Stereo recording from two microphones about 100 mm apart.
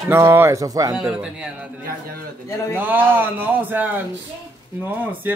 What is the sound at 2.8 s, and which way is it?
Speech, 20° right (ahead or behind).